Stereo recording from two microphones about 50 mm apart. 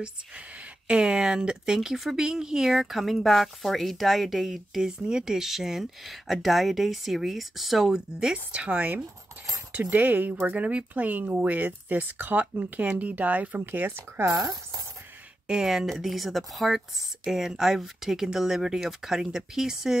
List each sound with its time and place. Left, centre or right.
0.8 s speech: centre; by 14.4 s right
15.4 s speech: centre